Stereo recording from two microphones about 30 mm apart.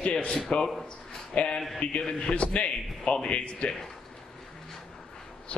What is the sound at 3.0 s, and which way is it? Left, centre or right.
Speech, left.